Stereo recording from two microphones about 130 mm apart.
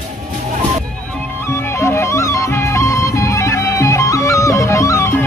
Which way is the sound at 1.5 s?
20° left (ahead or behind).